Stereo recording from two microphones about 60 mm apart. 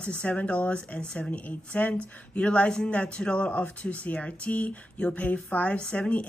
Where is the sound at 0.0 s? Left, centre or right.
Centre.